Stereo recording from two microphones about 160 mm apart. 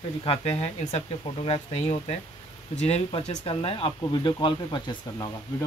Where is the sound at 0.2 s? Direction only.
40° left (ahead or behind).